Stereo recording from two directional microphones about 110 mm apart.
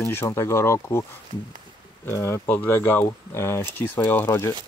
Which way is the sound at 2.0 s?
25° left (ahead or behind).